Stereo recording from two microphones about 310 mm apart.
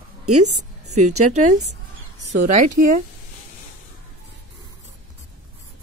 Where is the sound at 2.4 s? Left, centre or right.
Right.